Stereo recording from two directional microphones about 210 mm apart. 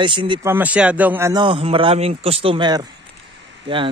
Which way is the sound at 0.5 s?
5° right (ahead or behind).